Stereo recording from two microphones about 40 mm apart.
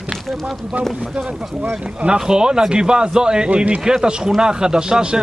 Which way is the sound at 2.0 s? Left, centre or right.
Right.